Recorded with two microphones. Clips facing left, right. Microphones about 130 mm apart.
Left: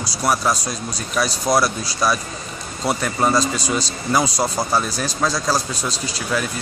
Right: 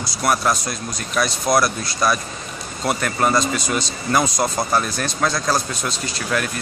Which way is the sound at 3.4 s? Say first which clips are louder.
Even; 35° left (ahead or behind).